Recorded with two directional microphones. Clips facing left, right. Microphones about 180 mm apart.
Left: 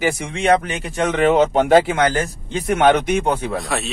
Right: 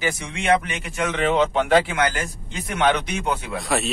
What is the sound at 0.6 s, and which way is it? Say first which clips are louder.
Speech: left 5 dB; 35° left (ahead or behind).